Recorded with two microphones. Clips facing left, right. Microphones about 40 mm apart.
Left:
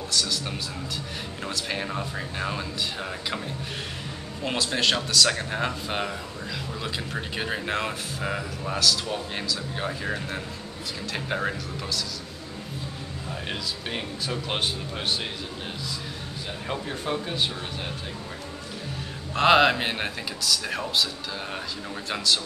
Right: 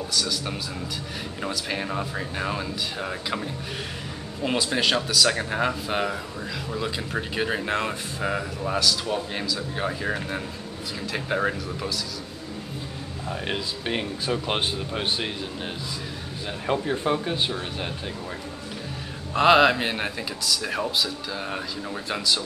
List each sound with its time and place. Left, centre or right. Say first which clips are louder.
0.1 s a man's voice: left 1 dB; centre
13.3 s speech: right 3 dB; centre
16.6 s speech: right 7 dB; centre
19.3 s a man's voice: right 2 dB; centre